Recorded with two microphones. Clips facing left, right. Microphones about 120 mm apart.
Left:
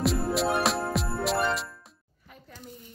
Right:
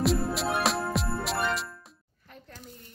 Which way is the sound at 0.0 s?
Centre (ahead or behind).